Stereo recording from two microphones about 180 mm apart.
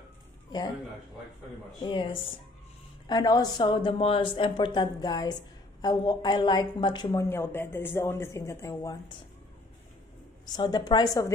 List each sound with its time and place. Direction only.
1.8 s a woman's voice: 25° left (ahead or behind)
7.1 s speech: 10° left (ahead or behind)
10.4 s a woman's voice: 20° left (ahead or behind)